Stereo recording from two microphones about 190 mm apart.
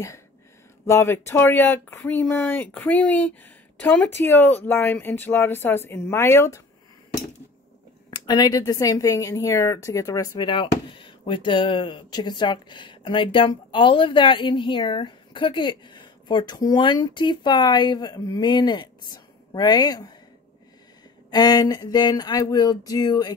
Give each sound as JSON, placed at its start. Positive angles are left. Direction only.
{"t": 0.8, "sound": "speech", "side_deg": 15}
{"t": 8.1, "sound": "speech", "side_deg": 20}
{"t": 21.3, "sound": "speech", "side_deg": 20}